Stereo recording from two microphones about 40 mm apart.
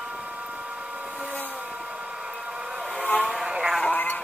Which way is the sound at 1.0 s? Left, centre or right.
Right.